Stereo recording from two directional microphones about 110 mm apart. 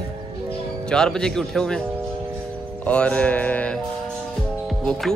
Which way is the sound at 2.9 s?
10° left (ahead or behind).